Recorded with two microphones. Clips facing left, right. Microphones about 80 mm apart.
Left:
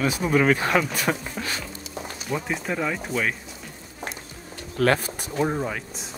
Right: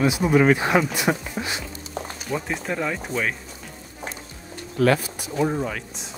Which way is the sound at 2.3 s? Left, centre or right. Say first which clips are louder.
Even; centre.